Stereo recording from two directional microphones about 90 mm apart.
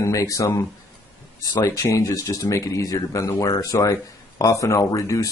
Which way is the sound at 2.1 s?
45° left (ahead or behind).